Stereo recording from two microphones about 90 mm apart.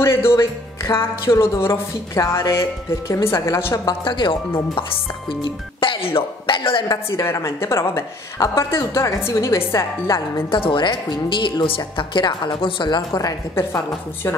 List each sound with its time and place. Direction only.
0.0 s music: 30° left (ahead or behind)
1.4 s a woman's voice: 30° left (ahead or behind)
3.8 s speech: 60° left (ahead or behind)
5.4 s music: 75° left (ahead or behind)
7.1 s a woman's voice: 35° left (ahead or behind)
10.5 s speech: 70° left (ahead or behind)
13.1 s a woman's voice: 35° left (ahead or behind)